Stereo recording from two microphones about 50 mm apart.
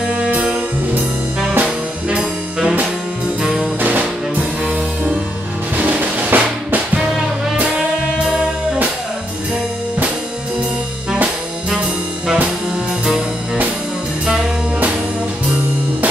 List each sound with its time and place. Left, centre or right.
0.1 s music: right
1.6 s brass instrument: right
3.8 s music: right
5.8 s drum: right